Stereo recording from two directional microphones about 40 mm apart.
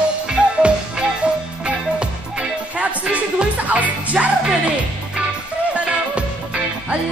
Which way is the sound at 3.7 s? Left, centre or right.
Right.